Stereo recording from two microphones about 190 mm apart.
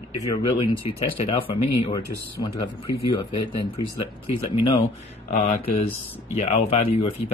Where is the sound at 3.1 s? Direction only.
25° left (ahead or behind).